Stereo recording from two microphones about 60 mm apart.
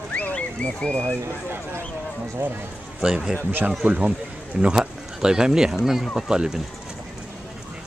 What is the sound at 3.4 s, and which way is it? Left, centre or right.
Speech, right.